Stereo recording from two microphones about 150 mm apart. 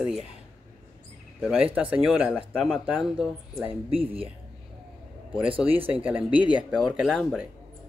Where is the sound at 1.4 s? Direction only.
10° right (ahead or behind).